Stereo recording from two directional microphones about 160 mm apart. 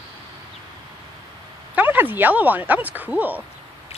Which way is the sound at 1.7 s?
10° right (ahead or behind).